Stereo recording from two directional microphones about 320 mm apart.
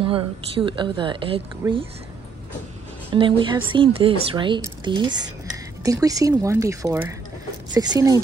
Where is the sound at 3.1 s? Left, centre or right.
Centre.